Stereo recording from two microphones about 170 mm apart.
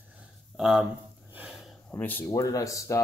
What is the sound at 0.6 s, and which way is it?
Speech, 5° right (ahead or behind).